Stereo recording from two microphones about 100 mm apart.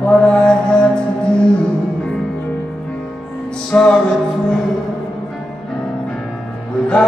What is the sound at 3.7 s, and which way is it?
Mantra, 15° left (ahead or behind).